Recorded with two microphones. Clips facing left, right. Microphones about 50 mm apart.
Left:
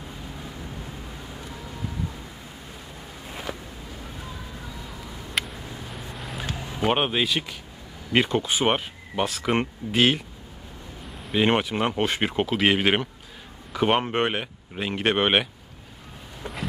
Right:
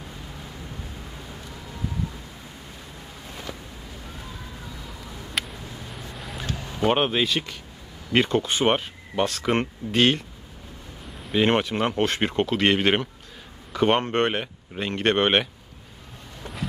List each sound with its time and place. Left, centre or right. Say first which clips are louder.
3.3 s a sound: left 3 dB; left
5.3 s vehicle: left 1 dB; centre
6.4 s speech: right 2 dB; centre
11.2 s speech: right 1 dB; centre